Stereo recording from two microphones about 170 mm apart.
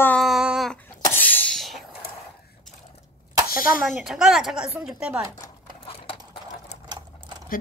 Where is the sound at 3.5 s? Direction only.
60° left (ahead or behind).